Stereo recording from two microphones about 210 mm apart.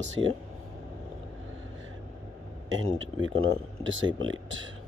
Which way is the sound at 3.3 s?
70° right (ahead or behind).